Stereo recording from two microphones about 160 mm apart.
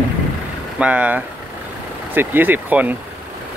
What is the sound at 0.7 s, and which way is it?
Speech, 10° right (ahead or behind).